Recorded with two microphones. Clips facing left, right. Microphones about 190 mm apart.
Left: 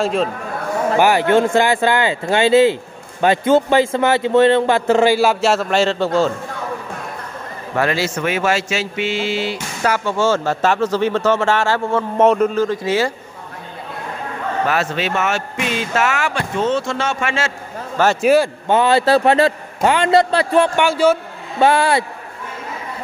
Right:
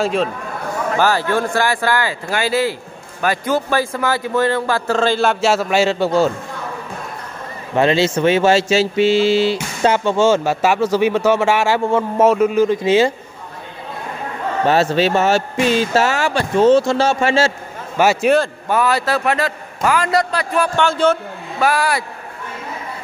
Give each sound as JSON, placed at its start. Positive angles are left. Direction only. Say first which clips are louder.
{"t": 0.0, "sound": "a man's voice", "louder": "even", "side_deg": 0}
{"t": 0.9, "sound": "speech", "louder": "left 4 dB", "side_deg": 15}
{"t": 7.7, "sound": "speech", "louder": "right 4 dB", "side_deg": -25}
{"t": 14.6, "sound": "speech", "louder": "right 6 dB", "side_deg": -30}
{"t": 17.9, "sound": "a man's voice", "louder": "right 1 dB", "side_deg": -10}
{"t": 18.2, "sound": "a man's voice", "louder": "left 4 dB", "side_deg": 5}
{"t": 18.7, "sound": "speech", "louder": "left 5 dB", "side_deg": 25}
{"t": 20.7, "sound": "a man's voice", "louder": "left 1 dB", "side_deg": 10}
{"t": 21.5, "sound": "speech", "louder": "left 3 dB", "side_deg": 25}